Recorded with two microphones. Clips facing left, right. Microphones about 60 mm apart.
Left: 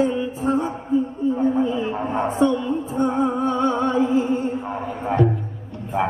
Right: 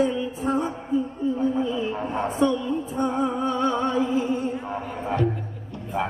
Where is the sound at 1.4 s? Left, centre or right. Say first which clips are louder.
Left 4 dB; left.